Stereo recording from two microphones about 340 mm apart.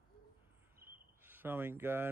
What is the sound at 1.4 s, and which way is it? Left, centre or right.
Speech, centre.